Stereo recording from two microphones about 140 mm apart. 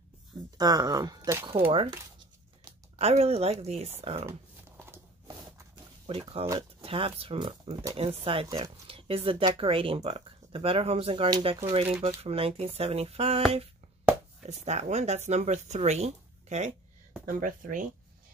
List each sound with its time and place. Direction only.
0.6 s speech: 30° right (ahead or behind)
3.0 s speech: 50° right (ahead or behind)
4.3 s a sound: 20° right (ahead or behind)
6.0 s speech: 40° right (ahead or behind)
14.5 s speech: 55° right (ahead or behind)
17.3 s speech: 75° right (ahead or behind)